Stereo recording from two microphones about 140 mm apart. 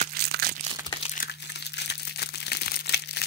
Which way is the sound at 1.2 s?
90° left.